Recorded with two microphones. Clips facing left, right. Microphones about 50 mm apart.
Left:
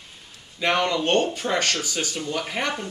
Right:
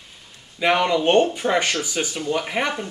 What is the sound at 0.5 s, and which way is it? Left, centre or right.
Speech, centre.